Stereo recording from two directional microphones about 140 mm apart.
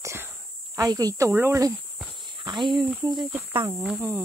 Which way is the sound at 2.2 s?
30° right (ahead or behind).